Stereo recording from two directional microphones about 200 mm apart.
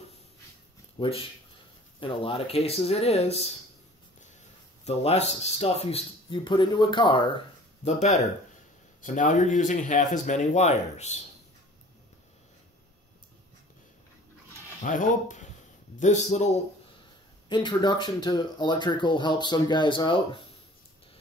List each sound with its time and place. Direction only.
0.9 s speech: 25° left (ahead or behind)
4.8 s speech: 30° left (ahead or behind)
14.8 s speech: 40° left (ahead or behind)
17.5 s speech: 20° left (ahead or behind)